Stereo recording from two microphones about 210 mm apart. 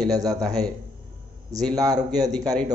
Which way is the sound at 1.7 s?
20° right (ahead or behind).